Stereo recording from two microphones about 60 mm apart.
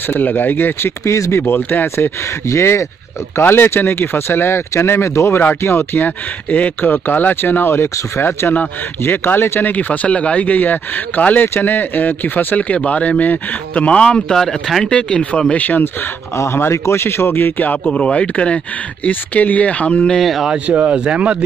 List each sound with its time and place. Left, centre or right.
0.1 s speech: left
1.0 s speech: left
1.4 s speech: left
2.4 s speech: left
3.3 s speech: left
6.0 s speech: left
11.4 s speech: left; by 14.2 s centre
14.3 s speech: centre; by 15.8 s left
16.3 s speech: left
17.8 s speech: centre
20.2 s speech: centre
20.5 s speech: right